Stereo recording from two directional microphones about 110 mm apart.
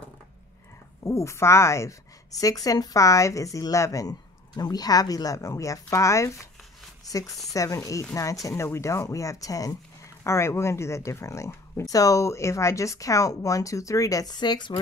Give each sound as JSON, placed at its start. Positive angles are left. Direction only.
{"t": 1.0, "sound": "a woman's voice", "side_deg": 25}
{"t": 7.5, "sound": "a woman's voice", "side_deg": 30}